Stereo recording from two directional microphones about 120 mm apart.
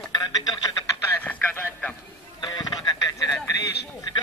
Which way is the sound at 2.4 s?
35° left (ahead or behind).